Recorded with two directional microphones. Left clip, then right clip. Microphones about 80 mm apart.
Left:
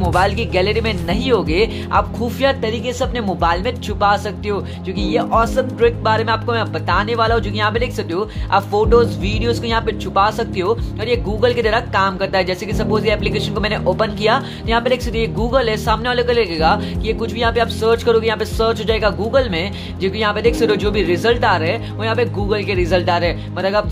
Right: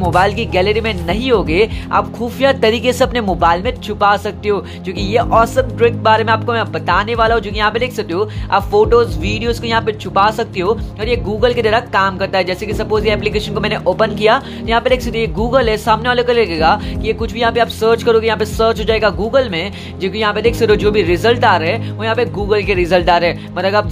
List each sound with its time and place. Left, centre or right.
0.0 s speech: right
2.6 s a woman's voice: right
3.3 s speech: right
5.0 s speech: right